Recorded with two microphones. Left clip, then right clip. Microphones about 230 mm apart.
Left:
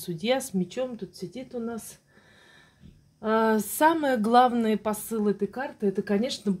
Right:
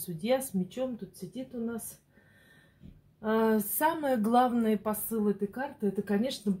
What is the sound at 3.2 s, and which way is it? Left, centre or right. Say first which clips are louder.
Speech: left 4 dB; left.